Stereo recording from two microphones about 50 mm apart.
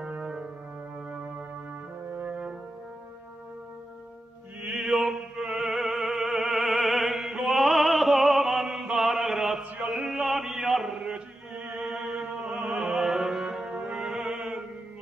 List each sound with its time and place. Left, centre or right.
0.0 s music: centre
4.7 s opera: centre
8.9 s mantra: centre
9.8 s chant: centre
11.1 s chant: right
11.8 s a sound: centre
12.2 s music: centre